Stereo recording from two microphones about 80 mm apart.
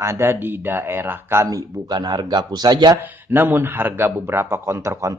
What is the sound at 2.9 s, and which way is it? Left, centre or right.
A man's voice, right.